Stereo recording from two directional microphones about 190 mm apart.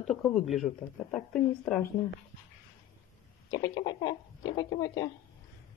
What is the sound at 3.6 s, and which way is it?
Speech, 20° left (ahead or behind).